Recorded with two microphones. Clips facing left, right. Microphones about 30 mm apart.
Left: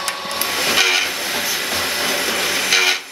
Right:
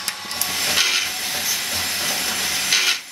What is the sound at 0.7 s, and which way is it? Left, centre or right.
Train, left.